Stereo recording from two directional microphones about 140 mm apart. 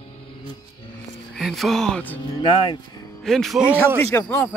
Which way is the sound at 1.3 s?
Centre (ahead or behind).